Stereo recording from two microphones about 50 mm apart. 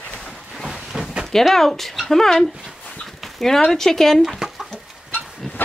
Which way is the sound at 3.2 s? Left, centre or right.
Centre.